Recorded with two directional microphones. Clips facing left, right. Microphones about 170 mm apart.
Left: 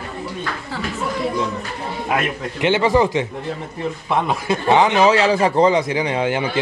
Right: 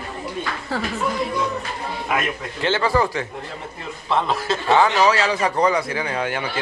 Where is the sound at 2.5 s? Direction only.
15° left (ahead or behind).